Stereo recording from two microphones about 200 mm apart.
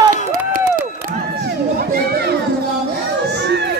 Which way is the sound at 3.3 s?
60° right (ahead or behind).